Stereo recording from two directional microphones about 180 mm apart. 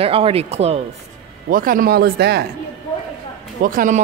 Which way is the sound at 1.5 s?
50° right (ahead or behind).